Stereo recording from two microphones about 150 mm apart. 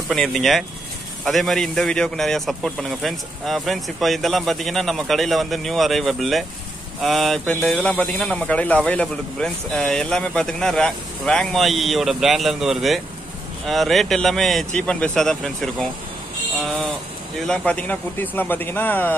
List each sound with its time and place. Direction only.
0.1 s a man's voice: centre (ahead or behind)
17.5 s a man's voice: 10° left (ahead or behind)